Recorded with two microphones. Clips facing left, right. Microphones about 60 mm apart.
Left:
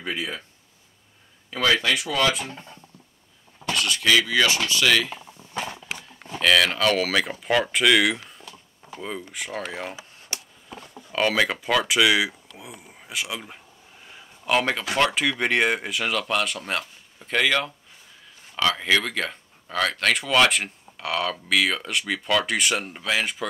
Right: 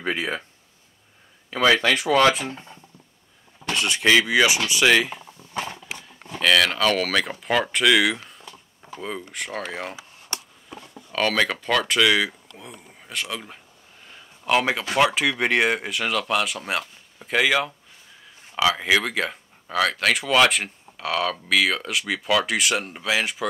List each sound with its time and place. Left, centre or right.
0.0 s speech: right
1.5 s speech: centre
3.7 s speech: right
6.4 s speech: centre
11.1 s speech: centre
14.0 s a sound: centre
15.0 s speech: centre